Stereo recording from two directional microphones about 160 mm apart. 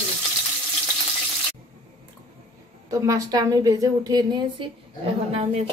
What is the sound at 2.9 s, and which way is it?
A woman's voice, 20° right (ahead or behind).